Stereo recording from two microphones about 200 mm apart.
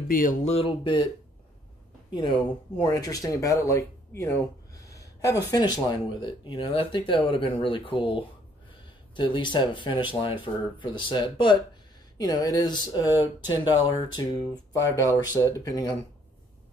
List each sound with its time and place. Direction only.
0.1 s speech: 40° left (ahead or behind); by 1.0 s 25° left (ahead or behind)
2.1 s speech: 25° left (ahead or behind)
5.5 s speech: 20° left (ahead or behind)